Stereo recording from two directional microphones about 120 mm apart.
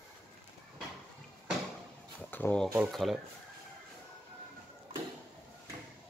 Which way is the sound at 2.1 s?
15° left (ahead or behind).